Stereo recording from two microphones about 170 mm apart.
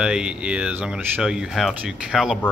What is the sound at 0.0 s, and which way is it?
Speech, 5° right (ahead or behind).